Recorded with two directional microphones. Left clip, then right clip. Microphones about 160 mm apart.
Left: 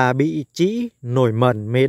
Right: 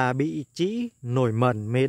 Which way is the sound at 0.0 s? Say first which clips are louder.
Left 7 dB; 35° left (ahead or behind).